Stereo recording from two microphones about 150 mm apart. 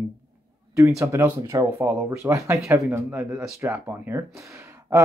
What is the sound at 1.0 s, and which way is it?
Speech, 15° right (ahead or behind).